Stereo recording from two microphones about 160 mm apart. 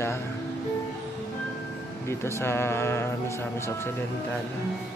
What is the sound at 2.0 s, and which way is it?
Speech, 15° left (ahead or behind).